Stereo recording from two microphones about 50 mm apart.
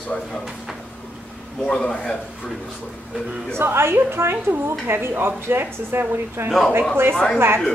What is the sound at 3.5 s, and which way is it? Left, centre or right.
A woman's voice, right.